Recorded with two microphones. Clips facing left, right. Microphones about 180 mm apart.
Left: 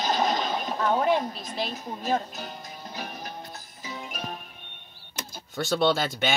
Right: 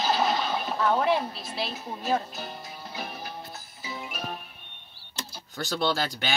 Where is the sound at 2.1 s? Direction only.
10° right (ahead or behind).